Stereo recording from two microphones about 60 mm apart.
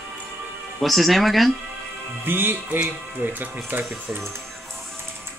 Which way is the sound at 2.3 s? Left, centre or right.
Right.